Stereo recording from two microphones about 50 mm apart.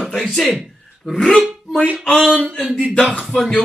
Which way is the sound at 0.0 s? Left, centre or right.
Centre.